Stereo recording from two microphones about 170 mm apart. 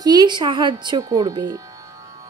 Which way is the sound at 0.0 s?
25° right (ahead or behind).